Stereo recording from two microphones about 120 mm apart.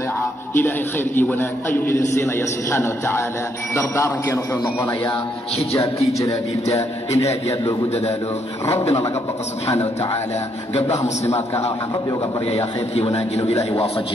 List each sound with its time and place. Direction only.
0.6 s a man's voice: 15° left (ahead or behind)
6.7 s a man's voice: 65° left (ahead or behind)
10.8 s a man's voice: 65° left (ahead or behind)